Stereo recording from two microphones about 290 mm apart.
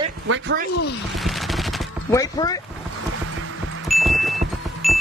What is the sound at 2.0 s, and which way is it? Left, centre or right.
Speech, centre.